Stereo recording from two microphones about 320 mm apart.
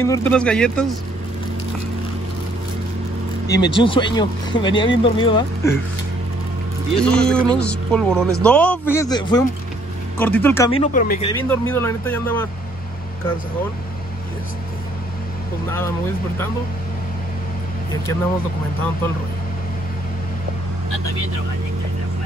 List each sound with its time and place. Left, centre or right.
0.0 s speech: centre
3.4 s speech: centre
7.0 s speech: centre; by 11.3 s left
11.3 s speech: centre